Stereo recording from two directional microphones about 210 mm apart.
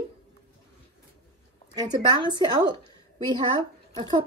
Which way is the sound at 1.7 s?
20° right (ahead or behind).